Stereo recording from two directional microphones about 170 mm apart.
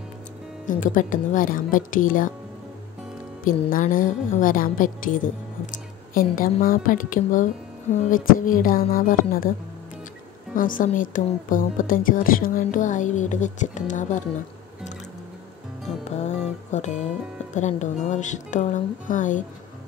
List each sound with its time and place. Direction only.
0.7 s a woman's voice: 50° left (ahead or behind)
3.4 s a woman's voice: 55° left (ahead or behind)
10.5 s a woman's voice: 55° left (ahead or behind)
16.0 s music: 40° left (ahead or behind)
17.6 s a woman's voice: 45° left (ahead or behind)